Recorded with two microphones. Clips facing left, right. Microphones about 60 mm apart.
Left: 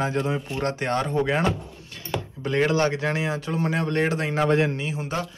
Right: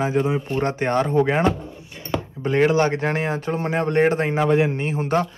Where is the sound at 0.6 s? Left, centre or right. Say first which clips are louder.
Right 4 dB; right.